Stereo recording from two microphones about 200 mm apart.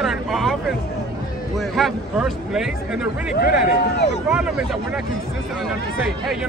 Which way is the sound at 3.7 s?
55° left (ahead or behind).